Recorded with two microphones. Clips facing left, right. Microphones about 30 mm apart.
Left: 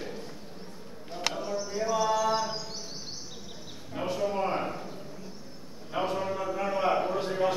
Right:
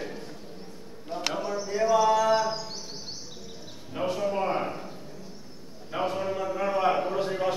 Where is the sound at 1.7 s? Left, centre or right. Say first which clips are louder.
Right 7 dB; right.